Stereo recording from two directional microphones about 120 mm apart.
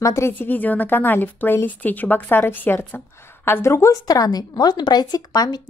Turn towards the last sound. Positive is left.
turn(degrees=35)  # may be behind; listen again after turning